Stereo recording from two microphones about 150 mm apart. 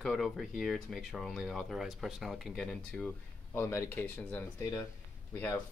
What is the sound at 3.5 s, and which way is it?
Speech, 15° left (ahead or behind).